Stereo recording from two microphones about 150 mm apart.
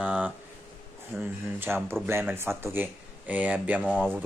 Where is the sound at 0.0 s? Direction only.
10° right (ahead or behind).